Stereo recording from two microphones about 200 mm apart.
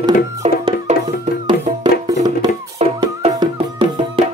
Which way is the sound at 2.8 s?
35° right (ahead or behind).